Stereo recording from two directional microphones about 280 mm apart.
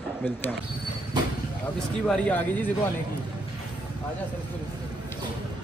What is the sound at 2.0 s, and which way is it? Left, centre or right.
Speech, centre.